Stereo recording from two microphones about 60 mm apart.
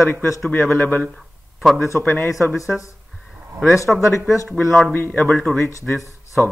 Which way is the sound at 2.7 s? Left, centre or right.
Left.